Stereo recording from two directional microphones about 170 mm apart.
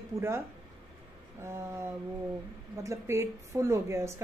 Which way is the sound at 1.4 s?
15° right (ahead or behind).